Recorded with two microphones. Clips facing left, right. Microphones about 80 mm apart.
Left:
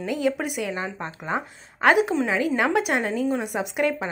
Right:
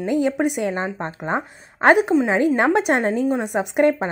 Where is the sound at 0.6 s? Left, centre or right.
Right.